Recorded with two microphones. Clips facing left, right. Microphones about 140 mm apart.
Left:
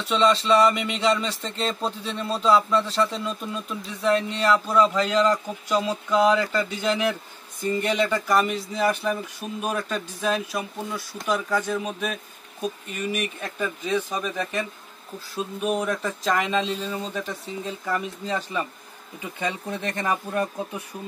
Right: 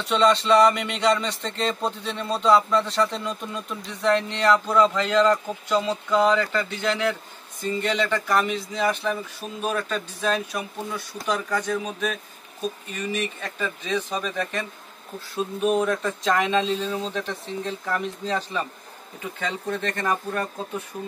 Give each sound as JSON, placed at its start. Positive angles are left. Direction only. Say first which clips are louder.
{"t": 0.0, "sound": "speech", "louder": "right 1 dB", "side_deg": 0}